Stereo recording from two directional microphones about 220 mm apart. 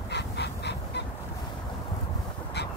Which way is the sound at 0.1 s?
50° left (ahead or behind).